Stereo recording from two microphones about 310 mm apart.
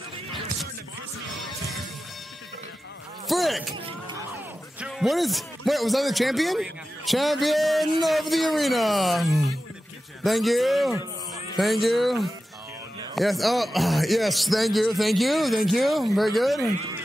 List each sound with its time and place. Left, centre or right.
3.3 s speech: centre
3.7 s music: centre
4.7 s speech: centre